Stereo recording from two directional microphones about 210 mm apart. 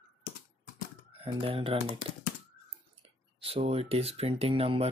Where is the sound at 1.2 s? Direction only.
25° right (ahead or behind).